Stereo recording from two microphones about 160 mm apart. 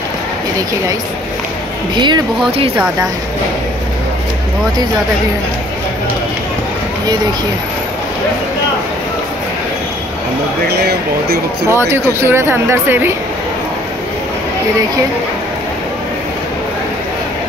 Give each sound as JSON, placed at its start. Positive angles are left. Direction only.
{"t": 2.0, "sound": "speech", "side_deg": -30}
{"t": 10.7, "sound": "speech", "side_deg": -90}
{"t": 11.7, "sound": "speech", "side_deg": -15}